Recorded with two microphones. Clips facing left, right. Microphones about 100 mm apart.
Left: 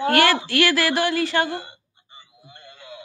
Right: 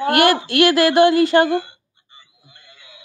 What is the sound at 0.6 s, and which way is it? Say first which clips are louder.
Speech: right 11 dB; 20° right (ahead or behind).